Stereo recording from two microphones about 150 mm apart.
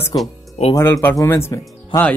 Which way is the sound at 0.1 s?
35° left (ahead or behind).